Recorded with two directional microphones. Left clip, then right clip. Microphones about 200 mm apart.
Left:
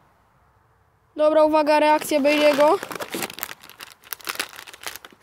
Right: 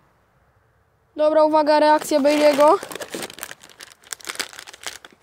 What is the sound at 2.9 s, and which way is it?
Crumpling, 15° left (ahead or behind).